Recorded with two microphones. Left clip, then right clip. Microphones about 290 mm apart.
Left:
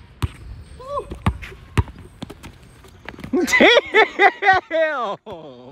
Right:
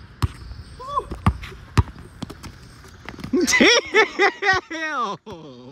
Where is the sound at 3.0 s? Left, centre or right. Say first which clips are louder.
Even; centre.